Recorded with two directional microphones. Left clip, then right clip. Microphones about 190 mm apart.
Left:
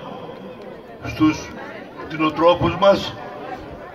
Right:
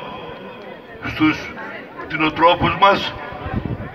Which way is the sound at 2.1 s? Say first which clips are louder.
Right 1 dB; 30° right (ahead or behind).